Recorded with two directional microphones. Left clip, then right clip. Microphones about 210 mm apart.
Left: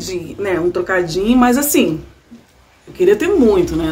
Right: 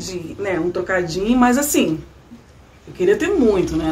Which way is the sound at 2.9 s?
20° left (ahead or behind).